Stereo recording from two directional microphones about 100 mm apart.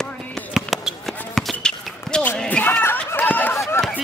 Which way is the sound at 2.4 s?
15° left (ahead or behind).